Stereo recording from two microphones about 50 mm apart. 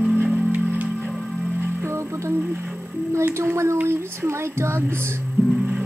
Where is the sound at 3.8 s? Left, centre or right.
Right.